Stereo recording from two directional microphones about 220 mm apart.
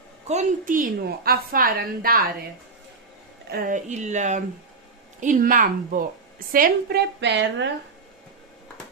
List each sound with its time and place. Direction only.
0.3 s a woman's voice: 35° right (ahead or behind)
3.5 s a woman's voice: 35° right (ahead or behind); by 7.7 s 55° right (ahead or behind)